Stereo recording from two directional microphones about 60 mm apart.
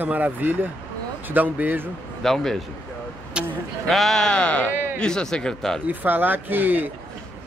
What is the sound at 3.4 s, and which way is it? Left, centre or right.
Vehicle, centre.